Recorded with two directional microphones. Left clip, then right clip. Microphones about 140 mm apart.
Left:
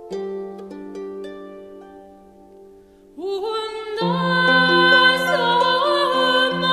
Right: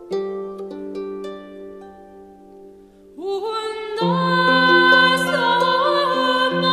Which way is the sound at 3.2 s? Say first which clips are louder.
Even; 35° right (ahead or behind).